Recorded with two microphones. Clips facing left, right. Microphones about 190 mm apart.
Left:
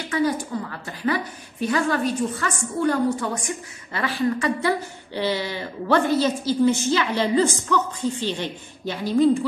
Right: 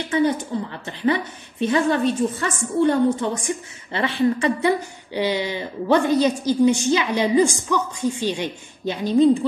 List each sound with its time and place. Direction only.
0.1 s a woman's voice: 25° right (ahead or behind)